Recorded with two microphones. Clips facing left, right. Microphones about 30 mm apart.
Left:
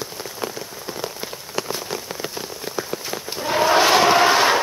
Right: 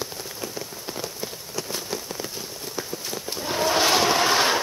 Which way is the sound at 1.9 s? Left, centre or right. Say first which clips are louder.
Left 2 dB; left.